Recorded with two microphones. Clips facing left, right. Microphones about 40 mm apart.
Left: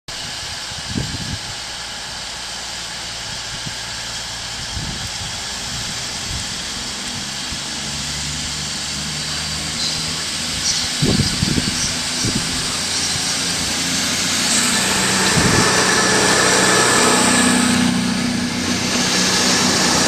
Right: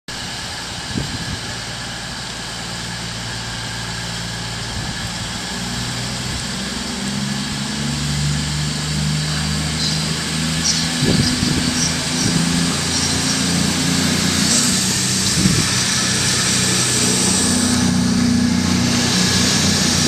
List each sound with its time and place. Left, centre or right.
11.2 s vehicle: centre
11.9 s vehicle: centre
14.6 s vehicle: left
15.0 s vehicle: left; by 19.3 s centre
19.6 s vehicle: left